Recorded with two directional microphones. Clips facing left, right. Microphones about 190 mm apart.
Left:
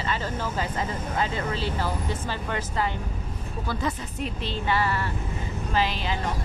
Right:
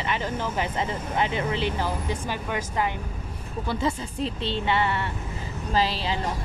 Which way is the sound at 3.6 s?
25° right (ahead or behind).